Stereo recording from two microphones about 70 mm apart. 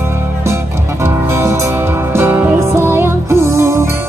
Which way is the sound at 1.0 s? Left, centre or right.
Right.